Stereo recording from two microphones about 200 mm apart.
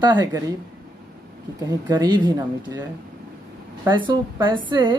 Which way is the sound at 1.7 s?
20° right (ahead or behind).